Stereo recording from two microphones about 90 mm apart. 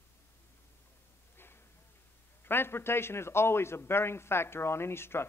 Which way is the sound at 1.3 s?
25° left (ahead or behind).